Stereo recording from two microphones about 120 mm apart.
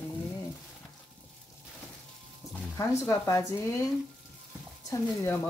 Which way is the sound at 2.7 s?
25° left (ahead or behind).